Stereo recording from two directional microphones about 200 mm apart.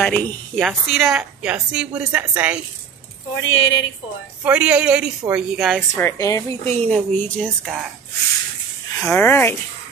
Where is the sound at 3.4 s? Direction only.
75° left (ahead or behind).